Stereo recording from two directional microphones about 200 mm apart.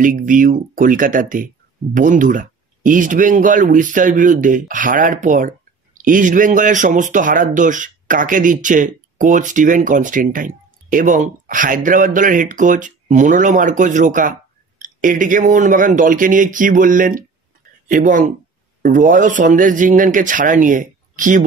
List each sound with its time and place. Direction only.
0.0 s speech: 40° right (ahead or behind)